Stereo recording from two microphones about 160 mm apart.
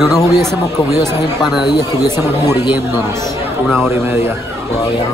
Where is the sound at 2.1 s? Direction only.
15° right (ahead or behind).